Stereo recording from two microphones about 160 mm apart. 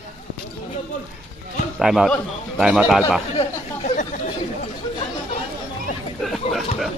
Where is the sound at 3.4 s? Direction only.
40° left (ahead or behind).